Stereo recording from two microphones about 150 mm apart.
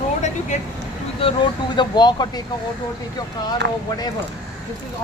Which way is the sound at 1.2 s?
30° left (ahead or behind).